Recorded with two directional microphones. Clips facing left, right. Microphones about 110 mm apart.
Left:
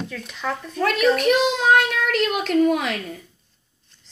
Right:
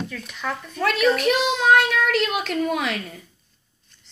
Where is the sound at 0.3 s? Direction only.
25° left (ahead or behind).